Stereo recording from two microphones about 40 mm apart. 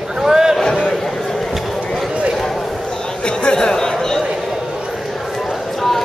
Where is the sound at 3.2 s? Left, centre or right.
Left.